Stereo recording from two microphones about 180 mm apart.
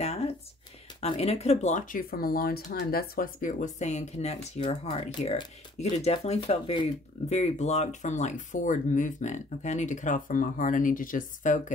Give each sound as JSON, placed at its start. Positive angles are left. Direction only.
{"t": 1.0, "sound": "speech", "side_deg": 35}